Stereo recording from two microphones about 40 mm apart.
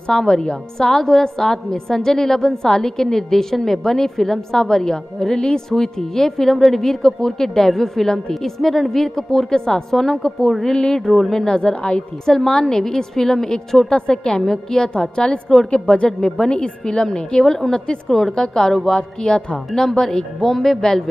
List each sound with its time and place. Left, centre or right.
0.1 s a woman's voice: centre
10.7 s speech: centre
11.1 s a woman's voice: centre
11.4 s speech: left
12.3 s a woman's voice: centre
15.0 s speech: left
16.1 s a woman's voice: centre
20.4 s speech: centre